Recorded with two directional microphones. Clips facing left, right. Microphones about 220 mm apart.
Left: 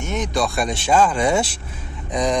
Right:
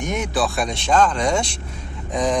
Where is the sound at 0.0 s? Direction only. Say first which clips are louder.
Even; 10° right (ahead or behind).